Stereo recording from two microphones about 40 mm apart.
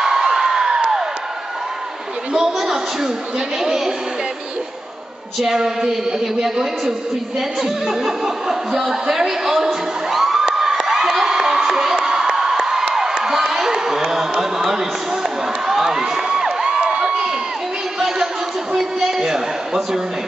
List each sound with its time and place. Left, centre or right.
0.0 s crowd: centre
2.3 s speech: centre
5.4 s speech: centre
10.6 s a sound: centre
12.3 s crowd: centre
12.9 s a sound: centre
16.6 s crowd: right
17.9 s music: centre
18.8 s a sound: centre